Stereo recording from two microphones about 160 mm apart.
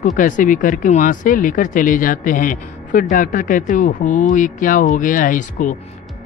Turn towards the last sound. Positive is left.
turn(degrees=55)  # may be behind; listen again after turning